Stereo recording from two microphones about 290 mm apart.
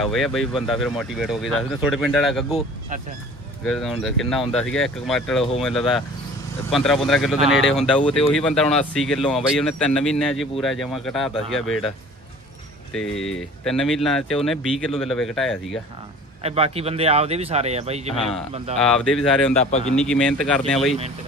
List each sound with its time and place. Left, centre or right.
0.0 s speech: centre
3.6 s speech: centre
12.9 s speech: centre
16.4 s speech: right
18.9 s speech: centre